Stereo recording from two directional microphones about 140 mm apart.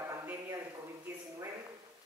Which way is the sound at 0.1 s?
20° right (ahead or behind).